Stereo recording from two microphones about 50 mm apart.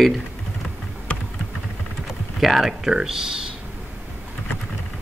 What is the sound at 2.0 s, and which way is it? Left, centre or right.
Speech, centre.